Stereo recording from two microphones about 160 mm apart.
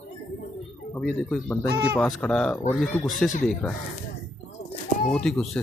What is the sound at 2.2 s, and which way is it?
Speech, 5° left (ahead or behind).